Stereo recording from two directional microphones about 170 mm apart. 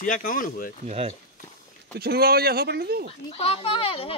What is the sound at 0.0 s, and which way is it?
Speech, 55° left (ahead or behind).